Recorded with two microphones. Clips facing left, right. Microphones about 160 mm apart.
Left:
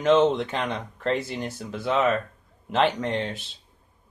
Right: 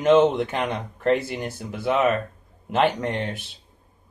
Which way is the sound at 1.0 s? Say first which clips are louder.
Right 5 dB; 55° right (ahead or behind).